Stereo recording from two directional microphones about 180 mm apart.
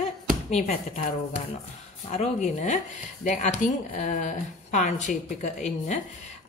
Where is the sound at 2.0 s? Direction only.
40° left (ahead or behind).